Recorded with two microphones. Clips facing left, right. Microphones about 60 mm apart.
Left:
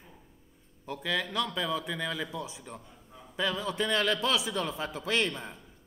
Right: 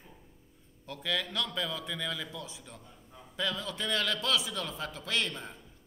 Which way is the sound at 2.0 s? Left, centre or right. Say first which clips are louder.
Left 3 dB; left.